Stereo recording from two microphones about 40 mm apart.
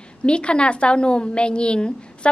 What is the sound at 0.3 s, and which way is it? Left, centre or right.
A woman's voice, left.